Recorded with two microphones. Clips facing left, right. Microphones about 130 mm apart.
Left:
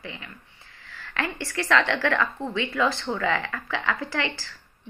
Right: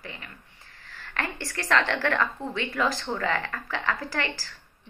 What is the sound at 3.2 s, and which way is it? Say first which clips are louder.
Speech: left 3 dB; 40° right (ahead or behind).